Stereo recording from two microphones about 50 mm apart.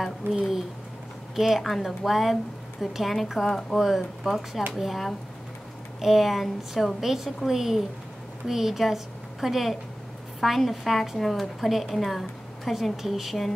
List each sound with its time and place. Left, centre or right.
0.0 s a woman's voice: centre